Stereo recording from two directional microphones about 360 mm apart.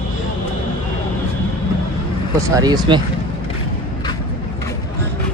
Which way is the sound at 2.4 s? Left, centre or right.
Centre.